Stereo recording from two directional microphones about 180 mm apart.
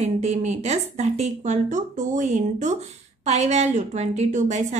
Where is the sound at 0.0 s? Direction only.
40° right (ahead or behind).